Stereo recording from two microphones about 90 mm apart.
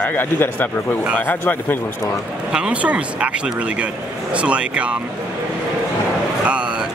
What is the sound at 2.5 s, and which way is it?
Speech, 10° right (ahead or behind).